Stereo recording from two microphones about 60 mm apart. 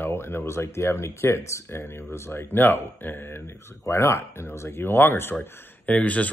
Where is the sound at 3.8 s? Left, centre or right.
Left.